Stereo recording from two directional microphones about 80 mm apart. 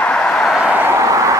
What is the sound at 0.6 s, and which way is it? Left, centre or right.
Vehicle, centre.